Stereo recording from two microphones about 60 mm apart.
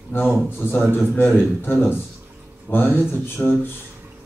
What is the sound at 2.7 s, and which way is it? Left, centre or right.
A man's voice, left.